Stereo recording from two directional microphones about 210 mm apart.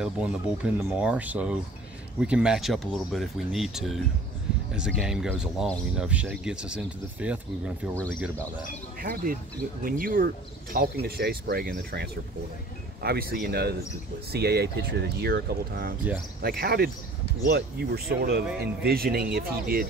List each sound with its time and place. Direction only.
0.0 s speech: 5° right (ahead or behind)
7.9 s speech: 5° left (ahead or behind)
9.0 s speech: 45° right (ahead or behind)